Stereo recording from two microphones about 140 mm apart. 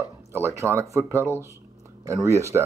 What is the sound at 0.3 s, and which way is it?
Speech, 20° right (ahead or behind).